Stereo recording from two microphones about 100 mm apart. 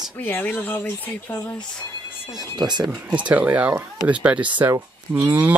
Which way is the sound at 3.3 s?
15° right (ahead or behind).